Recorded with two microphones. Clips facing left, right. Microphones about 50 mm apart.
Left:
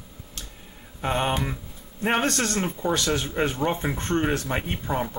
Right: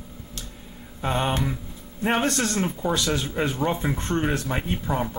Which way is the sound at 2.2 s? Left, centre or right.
Centre.